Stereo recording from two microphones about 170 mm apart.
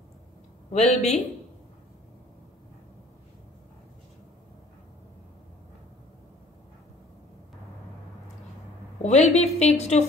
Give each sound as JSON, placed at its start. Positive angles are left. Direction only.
{"t": 0.7, "sound": "a woman's voice", "side_deg": 40}
{"t": 9.0, "sound": "a woman's voice", "side_deg": 40}